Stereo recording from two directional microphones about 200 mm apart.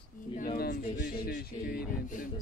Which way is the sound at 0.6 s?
55° left (ahead or behind).